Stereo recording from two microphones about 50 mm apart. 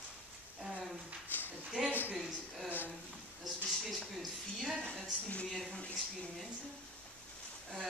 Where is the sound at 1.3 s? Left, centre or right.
Left.